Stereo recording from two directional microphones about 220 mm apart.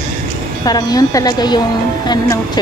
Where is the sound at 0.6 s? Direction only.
15° left (ahead or behind).